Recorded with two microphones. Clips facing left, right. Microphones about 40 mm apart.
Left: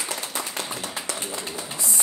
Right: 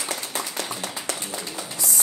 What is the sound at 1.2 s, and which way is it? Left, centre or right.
Bird, left.